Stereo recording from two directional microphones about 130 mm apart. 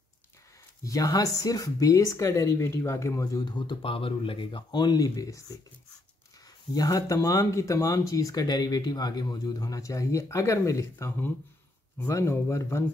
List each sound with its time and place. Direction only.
0.8 s speech: 25° left (ahead or behind)
6.7 s speech: 30° left (ahead or behind)